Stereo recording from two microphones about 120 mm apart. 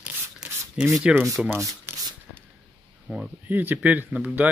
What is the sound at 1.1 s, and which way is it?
Speech, 25° right (ahead or behind).